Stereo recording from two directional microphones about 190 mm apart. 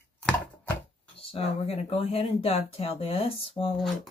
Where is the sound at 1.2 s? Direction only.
30° left (ahead or behind).